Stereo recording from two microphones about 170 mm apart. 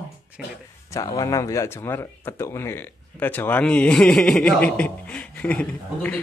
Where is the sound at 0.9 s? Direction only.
20° left (ahead or behind).